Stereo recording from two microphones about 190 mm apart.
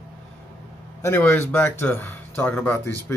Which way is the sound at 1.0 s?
15° left (ahead or behind).